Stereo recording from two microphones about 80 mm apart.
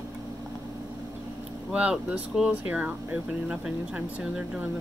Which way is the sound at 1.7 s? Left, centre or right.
Centre.